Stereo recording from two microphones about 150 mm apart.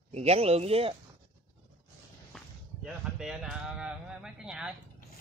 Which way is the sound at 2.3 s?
5° left (ahead or behind).